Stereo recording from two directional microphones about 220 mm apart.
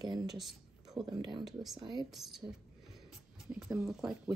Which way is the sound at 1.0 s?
20° right (ahead or behind).